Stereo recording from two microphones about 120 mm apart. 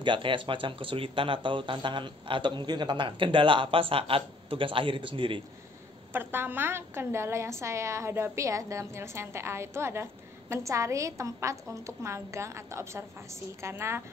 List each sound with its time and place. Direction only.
0.0 s speech: 45° right (ahead or behind)
6.1 s a woman's voice: 20° right (ahead or behind)